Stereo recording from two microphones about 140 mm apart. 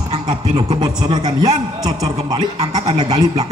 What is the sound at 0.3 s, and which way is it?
A woman's voice, 30° right (ahead or behind).